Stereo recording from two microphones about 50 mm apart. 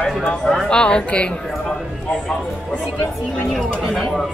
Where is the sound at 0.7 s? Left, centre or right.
Centre.